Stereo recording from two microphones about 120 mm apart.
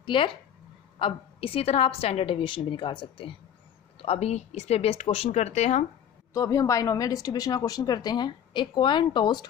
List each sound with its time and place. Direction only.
0.0 s a woman's voice: 45° left (ahead or behind)
4.0 s speech: 60° left (ahead or behind)
6.3 s speech: 30° left (ahead or behind)